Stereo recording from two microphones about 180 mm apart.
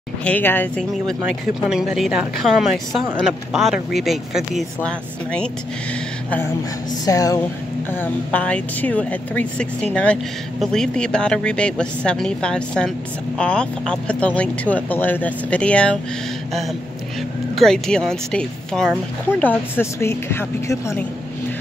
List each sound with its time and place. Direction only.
0.2 s speech: 10° left (ahead or behind)
7.1 s speech: 20° left (ahead or behind)
8.0 s speech: 10° left (ahead or behind)
17.6 s speech: 5° left (ahead or behind)